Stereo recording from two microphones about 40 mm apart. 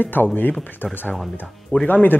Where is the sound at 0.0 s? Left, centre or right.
Left.